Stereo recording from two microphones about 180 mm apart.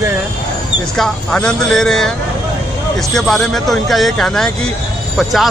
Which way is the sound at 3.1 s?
Centre (ahead or behind).